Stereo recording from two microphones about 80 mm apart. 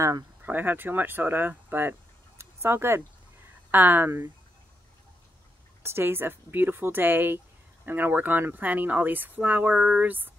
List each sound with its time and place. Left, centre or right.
0.4 s speech: right
5.8 s speech: right; by 10.0 s centre
10.0 s speech: right